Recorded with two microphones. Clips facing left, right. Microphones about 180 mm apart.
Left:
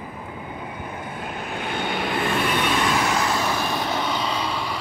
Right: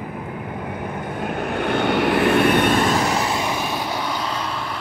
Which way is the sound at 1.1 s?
60° right (ahead or behind).